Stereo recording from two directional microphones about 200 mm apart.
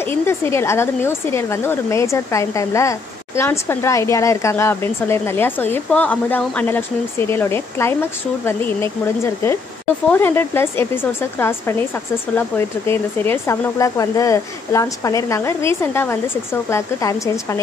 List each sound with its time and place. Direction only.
0.0 s speech: 10° left (ahead or behind)